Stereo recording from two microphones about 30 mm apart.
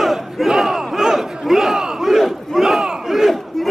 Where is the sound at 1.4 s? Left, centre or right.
Centre.